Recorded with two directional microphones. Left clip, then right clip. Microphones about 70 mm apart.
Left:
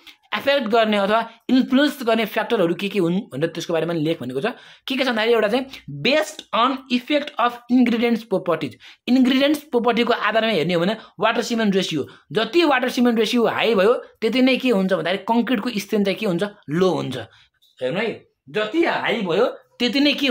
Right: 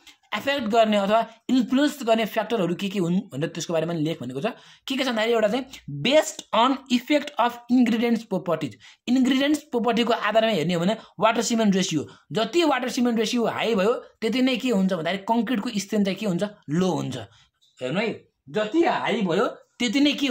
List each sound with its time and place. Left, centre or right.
0.3 s speech: right
5.3 s a woman's voice: centre
6.2 s speech: right
7.8 s speech: right
11.0 s speech: right
17.7 s speech: right
19.2 s speech: right
19.8 s a woman's voice: centre